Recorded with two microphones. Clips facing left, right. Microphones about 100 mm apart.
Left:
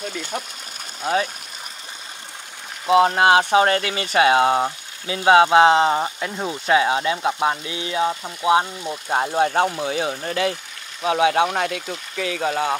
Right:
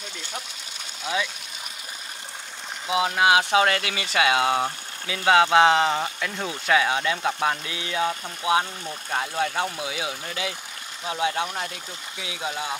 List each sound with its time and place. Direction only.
1.0 s speech: 45° left (ahead or behind)
2.9 s speech: 45° left (ahead or behind); by 9.2 s 25° left (ahead or behind)
9.2 s speech: 45° left (ahead or behind)
11.0 s speech: 75° left (ahead or behind); by 12.7 s 60° left (ahead or behind)